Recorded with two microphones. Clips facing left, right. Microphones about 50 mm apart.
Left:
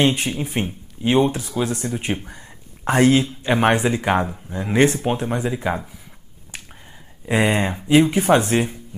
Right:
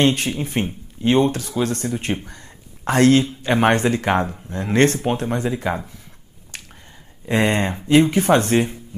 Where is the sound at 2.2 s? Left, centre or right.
Centre.